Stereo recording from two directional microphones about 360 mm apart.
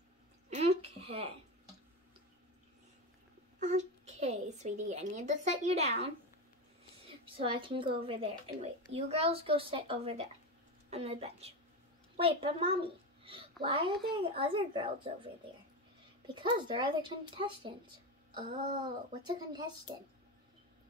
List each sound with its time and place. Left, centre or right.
0.5 s a sound: centre
3.5 s a woman's voice: centre
7.3 s a woman's voice: centre
16.3 s a woman's voice: centre